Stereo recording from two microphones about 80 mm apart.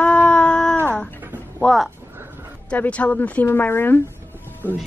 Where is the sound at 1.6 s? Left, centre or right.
Centre.